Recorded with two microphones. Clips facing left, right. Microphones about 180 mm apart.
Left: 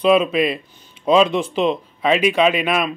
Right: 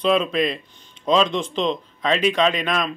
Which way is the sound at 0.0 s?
5° left (ahead or behind).